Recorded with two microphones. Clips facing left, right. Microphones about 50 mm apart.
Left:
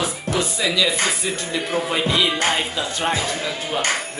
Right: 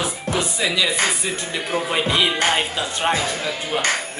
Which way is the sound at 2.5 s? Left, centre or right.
Right.